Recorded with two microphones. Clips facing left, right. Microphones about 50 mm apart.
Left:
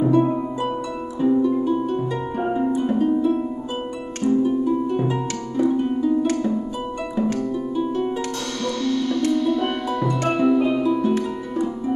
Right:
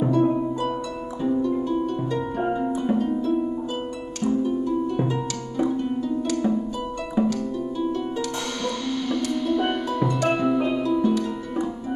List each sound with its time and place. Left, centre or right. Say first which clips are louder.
0.1 s harp: left 2 dB; centre
7.3 s harp: left 3 dB; centre
8.8 s music: left 6 dB; centre
10.3 s music: left 4 dB; centre
10.8 s harp: left 2 dB; centre